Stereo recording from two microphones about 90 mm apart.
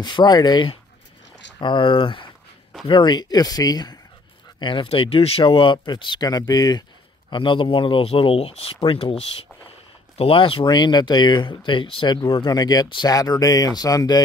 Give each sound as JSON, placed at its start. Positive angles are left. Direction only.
{"t": 0.0, "sound": "speech", "side_deg": 55}
{"t": 1.6, "sound": "speech", "side_deg": 60}
{"t": 4.6, "sound": "speech", "side_deg": 65}
{"t": 7.2, "sound": "speech", "side_deg": 65}
{"t": 10.7, "sound": "speech", "side_deg": 55}